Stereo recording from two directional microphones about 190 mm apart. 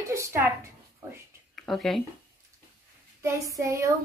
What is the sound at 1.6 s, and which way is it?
Speech, centre (ahead or behind).